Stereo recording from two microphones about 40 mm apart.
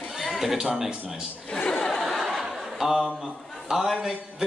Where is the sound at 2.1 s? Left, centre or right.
Centre.